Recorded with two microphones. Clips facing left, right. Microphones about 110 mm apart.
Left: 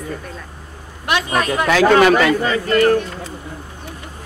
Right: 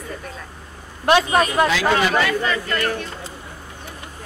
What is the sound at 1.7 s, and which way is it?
Speech, 55° left (ahead or behind).